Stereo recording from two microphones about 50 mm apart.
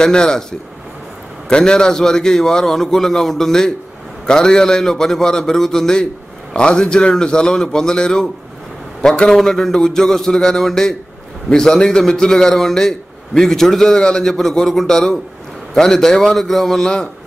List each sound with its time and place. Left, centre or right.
0.0 s a man's voice: centre
9.3 s a man's voice: centre